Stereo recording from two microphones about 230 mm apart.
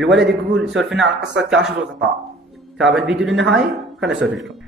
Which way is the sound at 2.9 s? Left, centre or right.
Centre.